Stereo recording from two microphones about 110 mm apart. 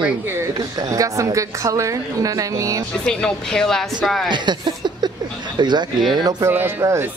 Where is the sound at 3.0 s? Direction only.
5° left (ahead or behind).